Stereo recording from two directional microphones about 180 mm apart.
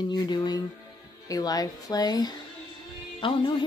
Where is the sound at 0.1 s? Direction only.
25° left (ahead or behind).